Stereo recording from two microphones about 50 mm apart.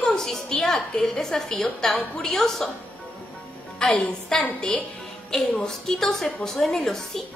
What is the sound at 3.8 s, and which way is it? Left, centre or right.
A woman's voice, centre.